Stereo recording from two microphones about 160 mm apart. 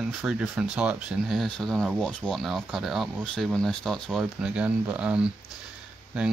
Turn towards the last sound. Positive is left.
turn(degrees=-5)  # may be behind; listen again after turning